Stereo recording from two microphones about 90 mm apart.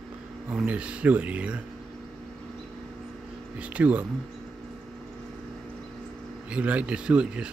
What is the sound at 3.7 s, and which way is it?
Speech, 15° right (ahead or behind).